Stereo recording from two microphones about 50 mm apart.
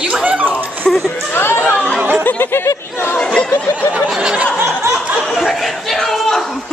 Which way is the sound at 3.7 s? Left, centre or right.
Left.